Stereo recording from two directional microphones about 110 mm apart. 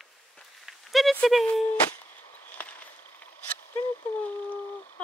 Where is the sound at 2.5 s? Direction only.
15° left (ahead or behind).